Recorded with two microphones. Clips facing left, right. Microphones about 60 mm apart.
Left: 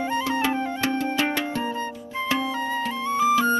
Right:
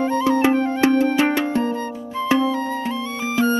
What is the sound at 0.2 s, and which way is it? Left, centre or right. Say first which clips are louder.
Music: right 7 dB; right.